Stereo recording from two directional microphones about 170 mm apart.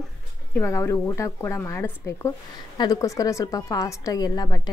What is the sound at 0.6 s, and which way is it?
A woman's voice, 15° left (ahead or behind).